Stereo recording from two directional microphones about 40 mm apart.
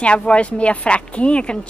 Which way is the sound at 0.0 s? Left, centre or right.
Left.